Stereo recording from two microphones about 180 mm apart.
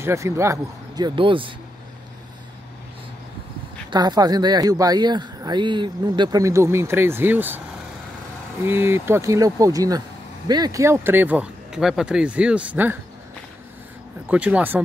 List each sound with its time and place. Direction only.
0.0 s speech: 15° right (ahead or behind)
3.9 s speech: 25° right (ahead or behind)
8.6 s speech: 15° right (ahead or behind)
14.3 s speech: 5° right (ahead or behind)